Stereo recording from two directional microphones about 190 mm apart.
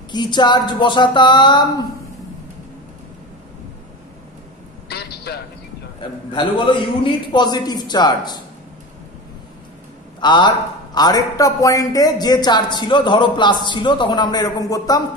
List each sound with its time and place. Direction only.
0.1 s a man's voice: 25° left (ahead or behind)
4.8 s a sound: 55° left (ahead or behind)
5.9 s a man's voice: 25° left (ahead or behind)
10.2 s a man's voice: 25° left (ahead or behind)